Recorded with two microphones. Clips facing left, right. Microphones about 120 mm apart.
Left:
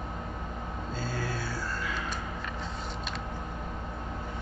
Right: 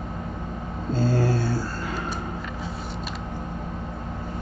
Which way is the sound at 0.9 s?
30° right (ahead or behind).